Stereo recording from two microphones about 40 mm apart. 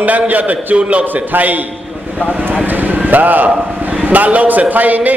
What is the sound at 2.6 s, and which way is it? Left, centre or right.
Vehicle, right.